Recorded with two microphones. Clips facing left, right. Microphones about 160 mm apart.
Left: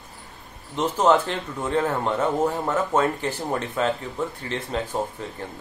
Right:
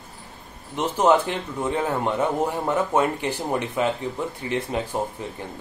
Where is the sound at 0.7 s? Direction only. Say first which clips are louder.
Even; 10° right (ahead or behind).